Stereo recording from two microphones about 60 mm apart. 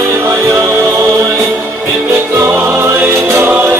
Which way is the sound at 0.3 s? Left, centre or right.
Right.